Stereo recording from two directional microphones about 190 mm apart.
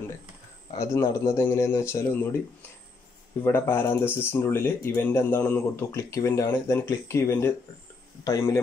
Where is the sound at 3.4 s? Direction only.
10° left (ahead or behind).